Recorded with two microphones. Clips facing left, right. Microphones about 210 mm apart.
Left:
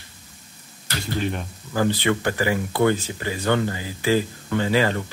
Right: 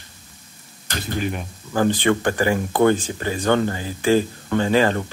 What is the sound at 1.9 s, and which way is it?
Speech, 50° right (ahead or behind).